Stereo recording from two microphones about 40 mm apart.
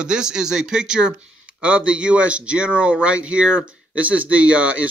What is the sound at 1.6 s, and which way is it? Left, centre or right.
Speech, right.